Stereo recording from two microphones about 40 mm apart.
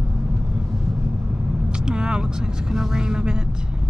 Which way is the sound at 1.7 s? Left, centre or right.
Right.